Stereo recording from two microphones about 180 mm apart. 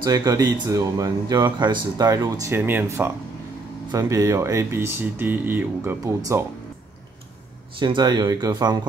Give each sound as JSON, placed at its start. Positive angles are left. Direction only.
{"t": 0.0, "sound": "speech", "side_deg": -20}
{"t": 7.7, "sound": "speech", "side_deg": -25}